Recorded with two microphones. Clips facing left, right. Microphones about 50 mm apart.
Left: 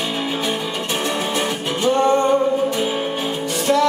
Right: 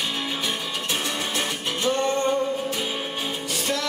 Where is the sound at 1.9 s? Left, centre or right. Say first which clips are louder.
Left 7 dB; centre.